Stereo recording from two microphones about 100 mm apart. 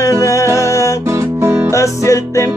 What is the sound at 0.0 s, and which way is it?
Music, 30° left (ahead or behind).